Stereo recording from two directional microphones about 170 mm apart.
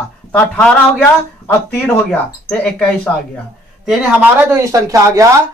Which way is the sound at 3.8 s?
10° right (ahead or behind).